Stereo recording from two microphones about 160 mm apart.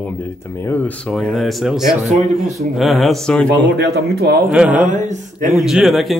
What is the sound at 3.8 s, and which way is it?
Speech, 85° right.